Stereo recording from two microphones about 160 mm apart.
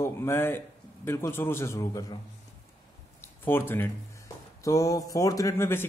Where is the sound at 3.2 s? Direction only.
15° left (ahead or behind).